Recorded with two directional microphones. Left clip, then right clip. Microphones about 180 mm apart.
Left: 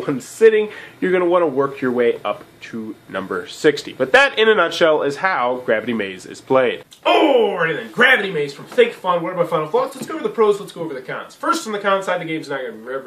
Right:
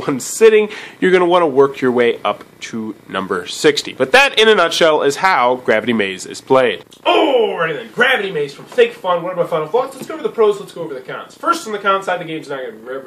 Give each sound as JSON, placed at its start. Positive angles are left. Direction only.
{"t": 0.0, "sound": "speech", "side_deg": -50}
{"t": 6.5, "sound": "speech", "side_deg": -25}
{"t": 7.5, "sound": "speech", "side_deg": 5}